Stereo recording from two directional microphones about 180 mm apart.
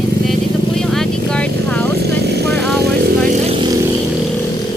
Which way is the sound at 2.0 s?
65° right (ahead or behind).